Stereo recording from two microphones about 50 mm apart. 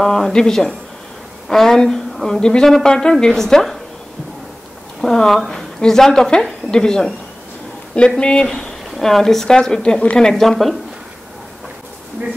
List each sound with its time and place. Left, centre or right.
0.0 s a woman's voice: centre
5.0 s a woman's voice: centre
8.2 s speech: centre
8.5 s a woman's voice: centre